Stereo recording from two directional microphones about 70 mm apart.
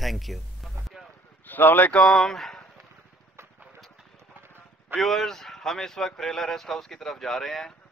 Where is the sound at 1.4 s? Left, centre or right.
Left.